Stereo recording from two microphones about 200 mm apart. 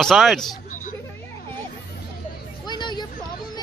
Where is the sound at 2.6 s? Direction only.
20° left (ahead or behind).